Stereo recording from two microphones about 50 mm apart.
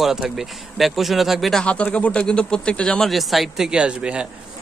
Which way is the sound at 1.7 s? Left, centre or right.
Left.